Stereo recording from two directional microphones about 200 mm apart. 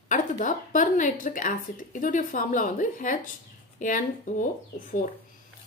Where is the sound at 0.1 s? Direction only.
40° left (ahead or behind).